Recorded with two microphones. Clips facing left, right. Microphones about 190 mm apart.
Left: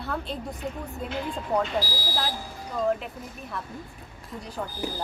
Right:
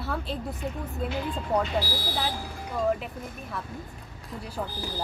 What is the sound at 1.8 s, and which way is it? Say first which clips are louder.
Speech: right 1 dB; 60° right (ahead or behind).